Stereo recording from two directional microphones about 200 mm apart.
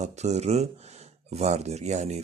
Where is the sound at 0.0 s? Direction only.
35° right (ahead or behind).